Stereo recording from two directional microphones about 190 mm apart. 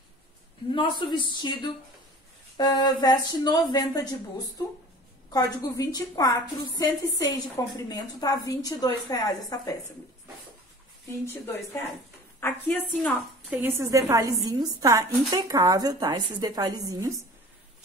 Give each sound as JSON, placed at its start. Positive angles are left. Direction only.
{"t": 0.7, "sound": "a woman's voice", "side_deg": 25}
{"t": 5.3, "sound": "a woman's voice", "side_deg": 20}
{"t": 12.4, "sound": "a woman's voice", "side_deg": 10}
{"t": 13.5, "sound": "a woman's voice", "side_deg": -10}